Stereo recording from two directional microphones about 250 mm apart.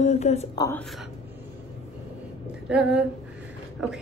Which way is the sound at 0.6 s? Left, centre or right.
Centre.